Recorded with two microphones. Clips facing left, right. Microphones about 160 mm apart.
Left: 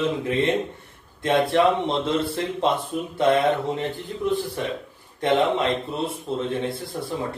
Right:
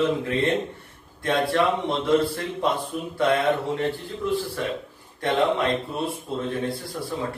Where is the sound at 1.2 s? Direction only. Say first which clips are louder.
Left 3 dB; 20° left (ahead or behind).